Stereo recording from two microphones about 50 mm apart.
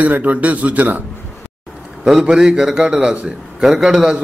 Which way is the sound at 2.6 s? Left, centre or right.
Centre.